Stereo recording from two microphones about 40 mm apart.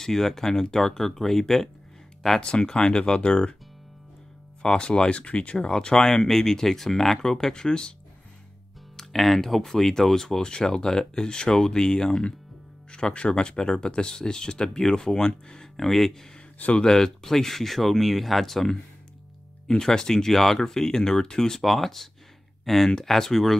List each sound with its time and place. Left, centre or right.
0.0 s speech: centre
2.4 s speech: left
4.6 s speech: left
8.9 s speech: centre
16.5 s speech: left
16.8 s speech: centre